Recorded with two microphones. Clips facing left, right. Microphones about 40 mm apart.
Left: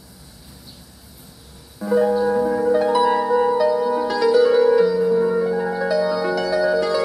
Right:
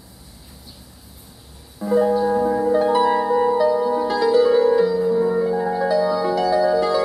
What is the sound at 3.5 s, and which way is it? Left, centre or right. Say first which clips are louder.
Music: even; centre.